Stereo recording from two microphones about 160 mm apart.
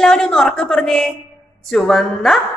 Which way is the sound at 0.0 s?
5° left (ahead or behind).